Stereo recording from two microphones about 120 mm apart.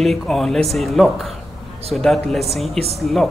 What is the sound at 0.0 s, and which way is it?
Speech, centre (ahead or behind).